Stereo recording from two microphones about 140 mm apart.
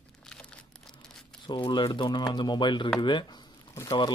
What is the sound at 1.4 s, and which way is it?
Speech, 35° left (ahead or behind).